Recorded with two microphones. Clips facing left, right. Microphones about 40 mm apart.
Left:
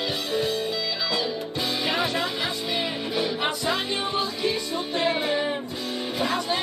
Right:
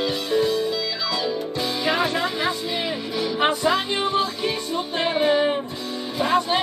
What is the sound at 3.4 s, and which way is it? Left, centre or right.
Music, right.